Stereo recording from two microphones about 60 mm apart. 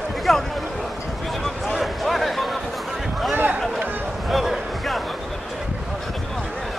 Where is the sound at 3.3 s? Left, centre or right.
Right.